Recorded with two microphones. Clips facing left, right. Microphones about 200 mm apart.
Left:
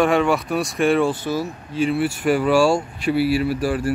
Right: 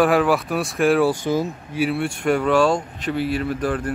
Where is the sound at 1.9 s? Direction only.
5° left (ahead or behind).